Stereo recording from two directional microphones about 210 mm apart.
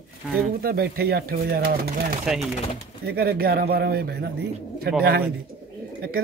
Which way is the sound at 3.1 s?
50° right (ahead or behind).